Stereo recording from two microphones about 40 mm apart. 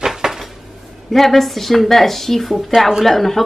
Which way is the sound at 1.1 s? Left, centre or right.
Centre.